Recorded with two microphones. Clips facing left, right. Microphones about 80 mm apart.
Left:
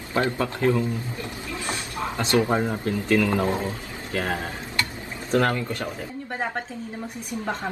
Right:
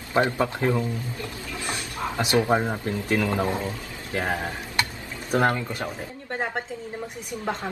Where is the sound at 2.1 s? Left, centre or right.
Right.